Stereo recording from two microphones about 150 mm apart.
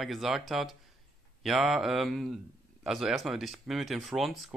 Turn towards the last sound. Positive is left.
turn(degrees=0)  # may be behind; listen again after turning